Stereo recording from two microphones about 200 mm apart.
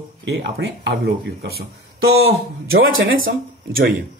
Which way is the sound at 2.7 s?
90° right.